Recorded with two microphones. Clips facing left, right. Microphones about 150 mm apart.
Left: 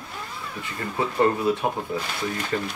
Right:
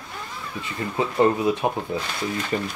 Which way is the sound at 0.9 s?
20° right (ahead or behind).